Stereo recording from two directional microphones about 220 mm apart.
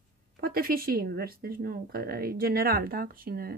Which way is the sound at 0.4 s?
40° right (ahead or behind).